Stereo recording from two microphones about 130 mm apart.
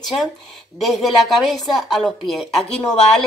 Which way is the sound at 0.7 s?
Centre (ahead or behind).